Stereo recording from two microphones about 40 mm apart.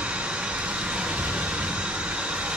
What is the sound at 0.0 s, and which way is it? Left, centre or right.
Vehicle, right.